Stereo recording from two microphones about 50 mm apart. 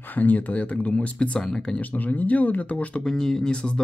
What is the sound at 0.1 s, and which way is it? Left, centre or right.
Speech, left.